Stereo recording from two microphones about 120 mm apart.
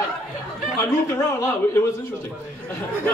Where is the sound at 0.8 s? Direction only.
20° left (ahead or behind).